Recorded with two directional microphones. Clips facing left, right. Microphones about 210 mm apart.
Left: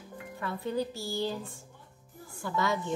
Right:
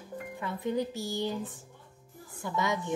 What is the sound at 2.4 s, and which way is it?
Speech, 20° right (ahead or behind).